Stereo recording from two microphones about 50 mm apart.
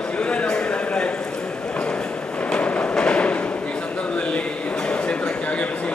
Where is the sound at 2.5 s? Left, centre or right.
Left.